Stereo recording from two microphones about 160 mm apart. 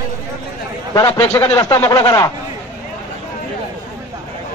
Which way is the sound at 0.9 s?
20° left (ahead or behind).